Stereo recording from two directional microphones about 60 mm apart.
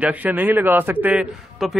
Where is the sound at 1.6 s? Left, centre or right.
Centre.